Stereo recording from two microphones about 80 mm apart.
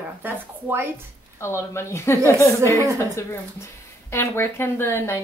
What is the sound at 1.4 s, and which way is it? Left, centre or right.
Speech, left.